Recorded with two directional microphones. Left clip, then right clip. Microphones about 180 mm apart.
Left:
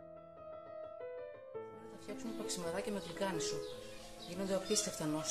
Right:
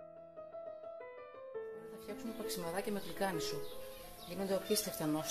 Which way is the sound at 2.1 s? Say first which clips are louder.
Even; 15° right (ahead or behind).